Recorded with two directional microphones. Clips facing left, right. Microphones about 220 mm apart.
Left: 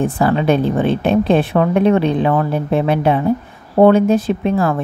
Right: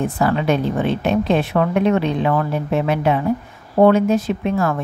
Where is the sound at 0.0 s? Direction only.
30° left (ahead or behind).